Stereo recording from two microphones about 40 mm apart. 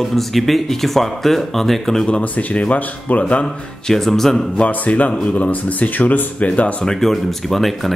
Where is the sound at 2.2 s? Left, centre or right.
Left.